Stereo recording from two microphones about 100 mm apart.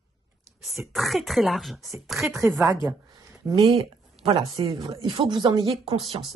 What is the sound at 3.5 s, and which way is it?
Speech, 55° right (ahead or behind).